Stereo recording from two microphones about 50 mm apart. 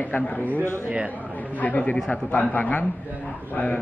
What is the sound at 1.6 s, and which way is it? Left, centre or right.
A man's voice, left.